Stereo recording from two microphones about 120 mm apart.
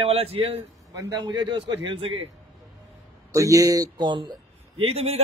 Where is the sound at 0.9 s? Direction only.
30° right (ahead or behind); by 2.3 s 50° right (ahead or behind).